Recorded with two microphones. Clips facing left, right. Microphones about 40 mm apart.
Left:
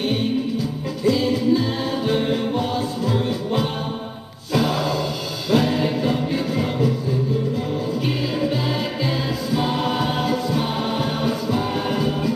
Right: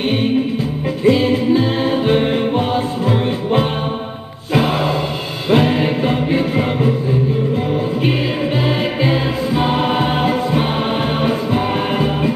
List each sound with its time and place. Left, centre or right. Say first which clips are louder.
0.1 s music: right 5 dB; right